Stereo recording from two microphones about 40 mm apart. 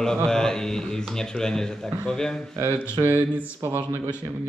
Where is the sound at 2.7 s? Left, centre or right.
Right.